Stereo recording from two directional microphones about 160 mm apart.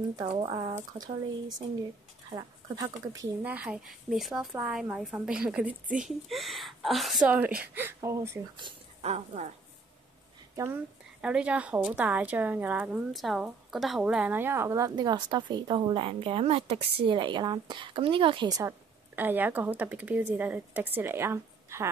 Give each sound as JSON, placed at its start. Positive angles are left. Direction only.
{"t": 0.3, "sound": "speech", "side_deg": -35}
{"t": 2.3, "sound": "a woman's voice", "side_deg": -20}
{"t": 3.4, "sound": "speech", "side_deg": -10}
{"t": 9.0, "sound": "a woman's voice", "side_deg": -45}
{"t": 10.5, "sound": "speech", "side_deg": -15}
{"t": 11.1, "sound": "a woman's voice", "side_deg": -5}
{"t": 18.6, "sound": "speech", "side_deg": -15}